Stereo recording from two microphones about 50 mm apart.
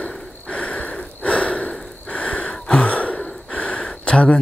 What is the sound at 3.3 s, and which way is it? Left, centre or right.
Gasp, centre.